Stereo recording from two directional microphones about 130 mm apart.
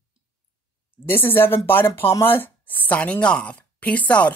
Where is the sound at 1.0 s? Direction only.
15° left (ahead or behind).